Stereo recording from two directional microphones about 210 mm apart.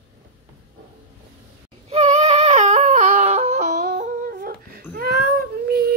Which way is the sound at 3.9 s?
40° right (ahead or behind).